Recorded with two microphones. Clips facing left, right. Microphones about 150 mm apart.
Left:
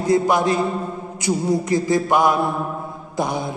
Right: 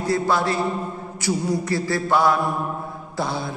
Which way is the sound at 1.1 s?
20° left (ahead or behind).